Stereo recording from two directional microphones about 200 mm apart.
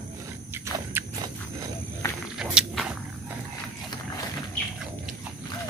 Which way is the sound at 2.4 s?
5° right (ahead or behind).